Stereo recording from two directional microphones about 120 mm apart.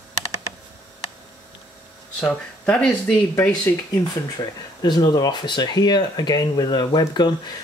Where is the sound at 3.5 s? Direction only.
35° left (ahead or behind).